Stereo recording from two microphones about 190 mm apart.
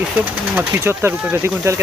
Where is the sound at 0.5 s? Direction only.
10° right (ahead or behind).